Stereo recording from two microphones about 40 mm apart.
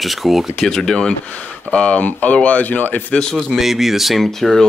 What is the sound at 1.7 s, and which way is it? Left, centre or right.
Speech, left.